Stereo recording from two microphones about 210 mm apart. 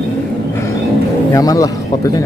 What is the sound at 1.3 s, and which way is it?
Speech, 15° left (ahead or behind).